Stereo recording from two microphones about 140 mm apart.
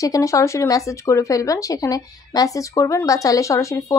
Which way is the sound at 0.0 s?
25° left (ahead or behind).